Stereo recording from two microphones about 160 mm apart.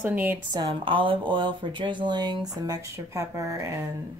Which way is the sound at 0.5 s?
30° right (ahead or behind).